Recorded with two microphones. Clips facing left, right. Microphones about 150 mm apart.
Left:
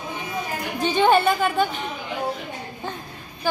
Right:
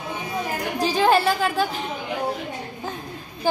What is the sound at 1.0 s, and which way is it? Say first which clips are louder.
Speech: left 2 dB; centre (ahead or behind).